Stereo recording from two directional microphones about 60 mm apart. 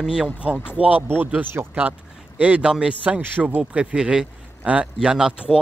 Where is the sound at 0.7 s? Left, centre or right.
Right.